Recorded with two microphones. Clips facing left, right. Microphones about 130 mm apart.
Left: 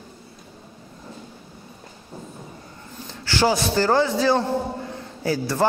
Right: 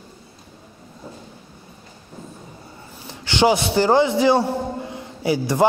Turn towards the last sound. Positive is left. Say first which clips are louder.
# right 4 dB
turn(degrees=-15)  # may be behind; listen again after turning